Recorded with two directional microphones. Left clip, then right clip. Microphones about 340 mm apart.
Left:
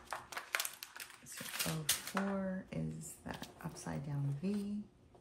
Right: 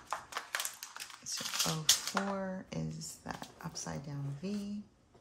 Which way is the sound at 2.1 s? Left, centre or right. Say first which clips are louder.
Right 3 dB; centre.